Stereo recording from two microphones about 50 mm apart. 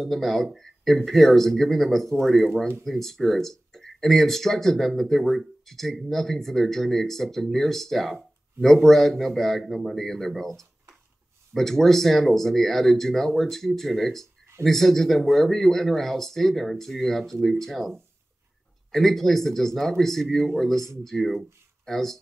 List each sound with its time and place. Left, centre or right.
0.0 s speech: centre